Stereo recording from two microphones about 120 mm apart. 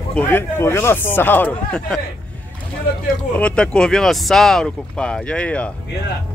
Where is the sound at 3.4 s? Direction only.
10° left (ahead or behind).